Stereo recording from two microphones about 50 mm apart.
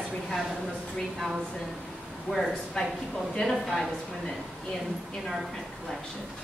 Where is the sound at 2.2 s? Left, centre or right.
Centre.